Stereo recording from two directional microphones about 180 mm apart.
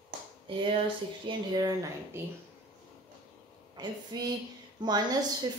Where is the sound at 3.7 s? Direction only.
25° right (ahead or behind).